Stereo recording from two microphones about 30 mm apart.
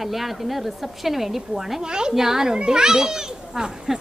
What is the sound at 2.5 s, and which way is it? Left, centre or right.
A child's voice, right.